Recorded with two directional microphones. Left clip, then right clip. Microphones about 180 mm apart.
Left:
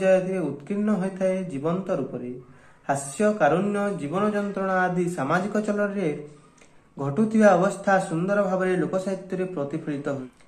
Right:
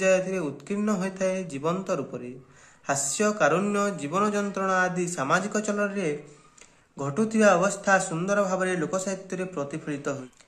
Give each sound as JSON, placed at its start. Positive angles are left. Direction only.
{"t": 0.0, "sound": "a man's voice", "side_deg": -20}